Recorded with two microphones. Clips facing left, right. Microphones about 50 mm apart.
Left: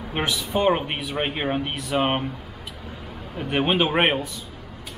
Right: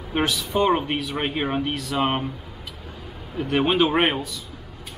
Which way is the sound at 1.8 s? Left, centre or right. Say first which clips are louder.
Left 1 dB; left.